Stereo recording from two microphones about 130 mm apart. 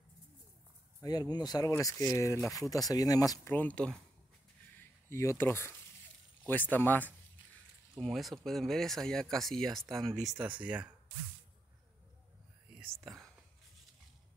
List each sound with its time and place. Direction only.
1.0 s speech: 30° left (ahead or behind)
3.5 s speech: 10° left (ahead or behind)
5.1 s speech: 20° left (ahead or behind)
8.0 s speech: centre (ahead or behind)
10.3 s speech: 10° right (ahead or behind)
13.0 s speech: centre (ahead or behind)